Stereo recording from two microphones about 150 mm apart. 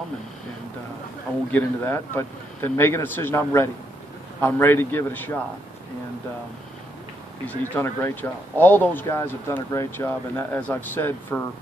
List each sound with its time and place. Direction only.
1.5 s speech: 15° left (ahead or behind)
7.4 s speech: 15° left (ahead or behind)